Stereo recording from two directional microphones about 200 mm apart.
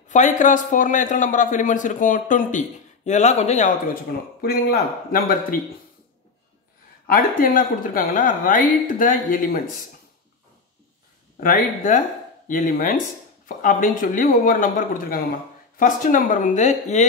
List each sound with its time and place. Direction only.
0.1 s a man's voice: 40° left (ahead or behind)
7.1 s speech: 45° left (ahead or behind)
11.3 s a man's voice: 40° left (ahead or behind)